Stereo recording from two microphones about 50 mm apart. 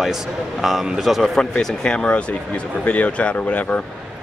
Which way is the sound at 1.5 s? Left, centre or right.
Centre.